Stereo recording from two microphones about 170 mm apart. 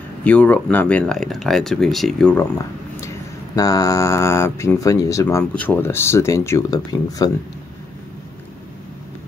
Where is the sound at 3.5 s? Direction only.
20° left (ahead or behind).